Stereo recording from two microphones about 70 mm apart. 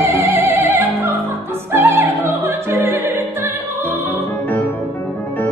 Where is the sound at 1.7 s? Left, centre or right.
Right.